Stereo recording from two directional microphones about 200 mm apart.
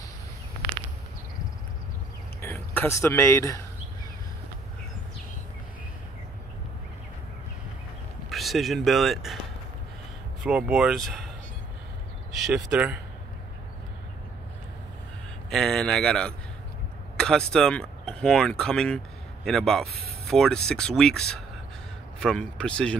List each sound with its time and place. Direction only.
2.4 s speech: 10° left (ahead or behind)
8.3 s speech: centre (ahead or behind)
10.4 s speech: centre (ahead or behind)
12.3 s speech: centre (ahead or behind)
15.5 s speech: centre (ahead or behind)